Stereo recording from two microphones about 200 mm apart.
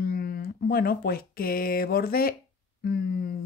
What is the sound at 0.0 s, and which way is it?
Speech, 50° left (ahead or behind).